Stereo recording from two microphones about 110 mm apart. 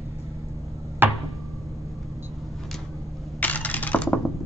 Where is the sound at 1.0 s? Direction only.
20° right (ahead or behind).